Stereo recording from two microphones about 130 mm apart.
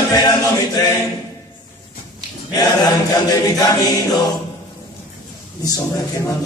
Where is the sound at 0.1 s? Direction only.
30° left (ahead or behind).